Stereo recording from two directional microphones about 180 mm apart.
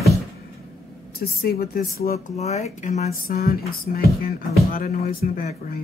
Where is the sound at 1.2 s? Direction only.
60° left (ahead or behind).